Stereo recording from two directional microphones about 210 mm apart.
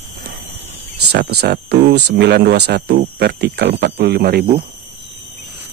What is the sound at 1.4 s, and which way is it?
Speech, 50° right (ahead or behind).